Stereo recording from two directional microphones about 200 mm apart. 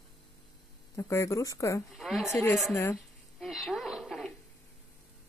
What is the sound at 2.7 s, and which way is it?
Speech, 15° left (ahead or behind).